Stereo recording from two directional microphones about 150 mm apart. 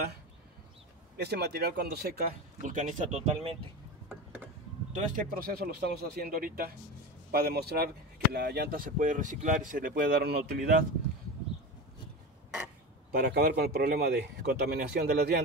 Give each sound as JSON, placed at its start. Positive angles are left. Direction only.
{"t": 1.2, "sound": "speech", "side_deg": -90}
{"t": 4.9, "sound": "speech", "side_deg": -60}
{"t": 13.1, "sound": "speech", "side_deg": -90}